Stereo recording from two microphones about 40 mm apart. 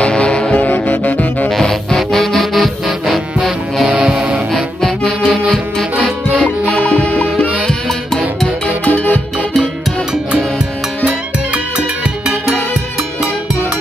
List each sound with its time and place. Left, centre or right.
0.0 s music: left
0.7 s saxophone: left
1.5 s music: centre
3.8 s music: right
4.1 s music: right
6.7 s music: left
8.6 s music: left